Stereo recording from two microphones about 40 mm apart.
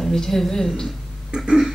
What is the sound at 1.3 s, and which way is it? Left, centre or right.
Throat clearing, centre.